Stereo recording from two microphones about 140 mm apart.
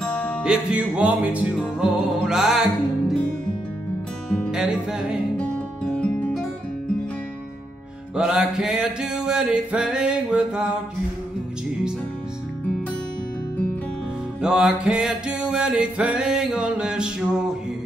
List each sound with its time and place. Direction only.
0.4 s music: 5° right (ahead or behind)
4.5 s music: 5° right (ahead or behind)
5.9 s music: 10° left (ahead or behind)
8.1 s music: 5° right (ahead or behind)
14.4 s music: 5° right (ahead or behind)